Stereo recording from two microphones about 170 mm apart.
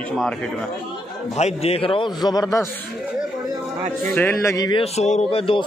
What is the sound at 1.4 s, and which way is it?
A man's voice, 40° left (ahead or behind).